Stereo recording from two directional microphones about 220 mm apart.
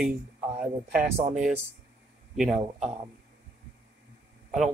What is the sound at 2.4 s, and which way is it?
Speech, centre (ahead or behind).